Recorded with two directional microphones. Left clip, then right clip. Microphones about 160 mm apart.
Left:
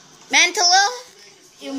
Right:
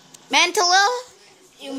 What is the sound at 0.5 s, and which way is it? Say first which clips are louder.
Speech: left 1 dB; 40° right (ahead or behind).